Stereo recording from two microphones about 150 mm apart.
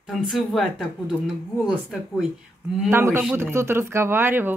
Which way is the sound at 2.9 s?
15° right (ahead or behind).